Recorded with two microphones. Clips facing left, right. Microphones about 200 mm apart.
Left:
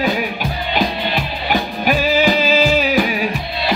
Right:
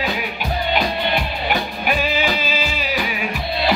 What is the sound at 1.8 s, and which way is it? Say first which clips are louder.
Music: left 6 dB; 45° left (ahead or behind).